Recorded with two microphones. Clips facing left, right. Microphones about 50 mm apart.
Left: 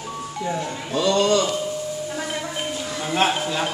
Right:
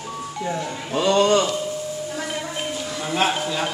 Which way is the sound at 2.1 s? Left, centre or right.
Centre.